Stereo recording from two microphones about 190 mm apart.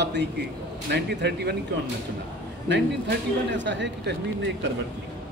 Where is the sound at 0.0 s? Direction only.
65° right (ahead or behind).